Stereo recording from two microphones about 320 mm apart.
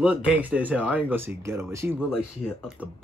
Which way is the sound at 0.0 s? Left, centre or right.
Centre.